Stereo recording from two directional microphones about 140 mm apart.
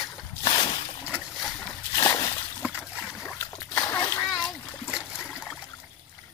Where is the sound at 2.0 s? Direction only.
30° left (ahead or behind).